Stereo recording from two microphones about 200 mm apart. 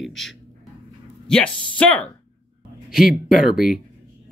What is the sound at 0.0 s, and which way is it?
A man's voice, centre (ahead or behind).